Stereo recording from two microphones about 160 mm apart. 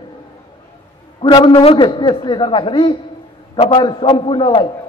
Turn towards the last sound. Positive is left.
turn(degrees=30)  # may be behind; listen again after turning